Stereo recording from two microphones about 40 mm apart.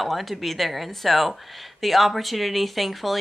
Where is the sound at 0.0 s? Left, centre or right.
Centre.